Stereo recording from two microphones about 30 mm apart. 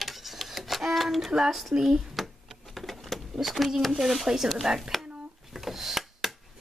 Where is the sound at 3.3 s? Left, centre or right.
Centre.